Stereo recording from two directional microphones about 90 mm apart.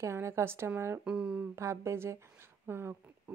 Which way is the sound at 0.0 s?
30° right (ahead or behind).